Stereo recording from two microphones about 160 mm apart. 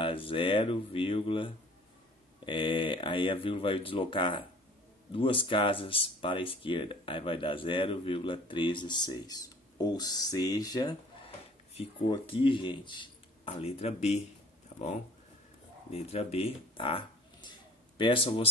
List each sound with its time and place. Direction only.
0.0 s speech: 35° left (ahead or behind)
12.1 s speech: 30° left (ahead or behind)
15.9 s speech: 40° left (ahead or behind)